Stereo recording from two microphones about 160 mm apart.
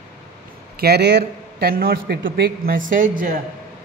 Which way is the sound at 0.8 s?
85° right.